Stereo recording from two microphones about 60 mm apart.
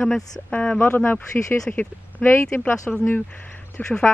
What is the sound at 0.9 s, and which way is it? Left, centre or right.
Speech, left.